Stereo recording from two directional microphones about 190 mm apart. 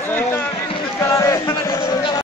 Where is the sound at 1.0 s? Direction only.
15° left (ahead or behind).